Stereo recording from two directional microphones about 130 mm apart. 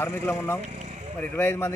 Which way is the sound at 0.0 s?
20° left (ahead or behind).